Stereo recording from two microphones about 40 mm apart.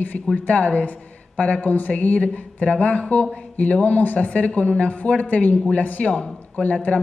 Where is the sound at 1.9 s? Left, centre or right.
Left.